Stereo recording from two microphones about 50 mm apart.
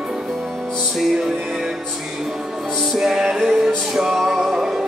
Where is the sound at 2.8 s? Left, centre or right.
Centre.